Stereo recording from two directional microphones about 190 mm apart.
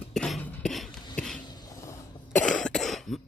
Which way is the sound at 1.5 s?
20° left (ahead or behind).